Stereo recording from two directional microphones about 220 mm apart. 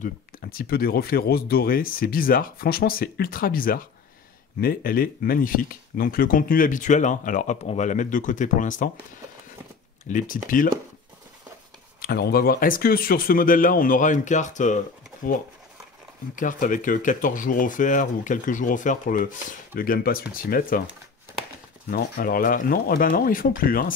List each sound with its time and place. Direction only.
0.0 s speech: 40° left (ahead or behind)
10.0 s speech: 35° left (ahead or behind)
12.0 s speech: 45° left (ahead or behind)
16.3 s speech: 35° left (ahead or behind)
21.8 s speech: 40° left (ahead or behind)